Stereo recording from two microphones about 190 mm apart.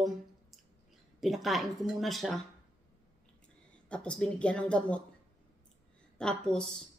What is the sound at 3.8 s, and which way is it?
Speech, 5° left (ahead or behind).